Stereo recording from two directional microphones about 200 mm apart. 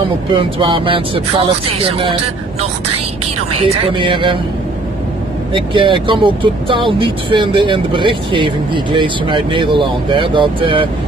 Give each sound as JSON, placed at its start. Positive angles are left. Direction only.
{"t": 0.3, "sound": "speech", "side_deg": -25}
{"t": 3.6, "sound": "speech", "side_deg": -25}
{"t": 5.5, "sound": "speech", "side_deg": -25}